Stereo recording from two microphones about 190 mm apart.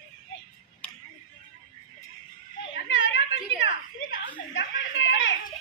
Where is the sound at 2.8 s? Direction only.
85° left.